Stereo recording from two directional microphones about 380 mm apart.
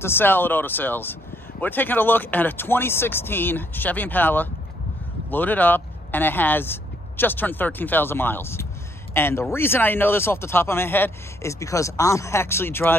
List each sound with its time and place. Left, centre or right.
0.0 s speech: centre